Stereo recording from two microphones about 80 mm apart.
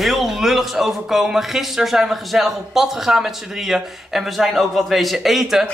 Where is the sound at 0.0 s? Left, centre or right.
Centre.